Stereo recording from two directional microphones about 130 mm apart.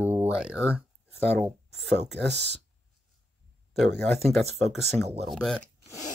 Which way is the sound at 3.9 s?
55° right (ahead or behind).